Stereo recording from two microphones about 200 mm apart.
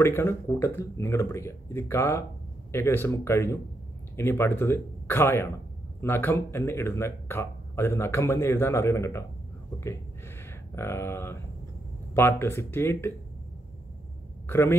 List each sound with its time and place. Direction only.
0.0 s speech: 10° left (ahead or behind)
14.5 s speech: 10° left (ahead or behind)